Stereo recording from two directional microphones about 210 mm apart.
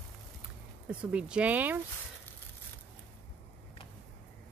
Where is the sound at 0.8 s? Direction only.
5° right (ahead or behind).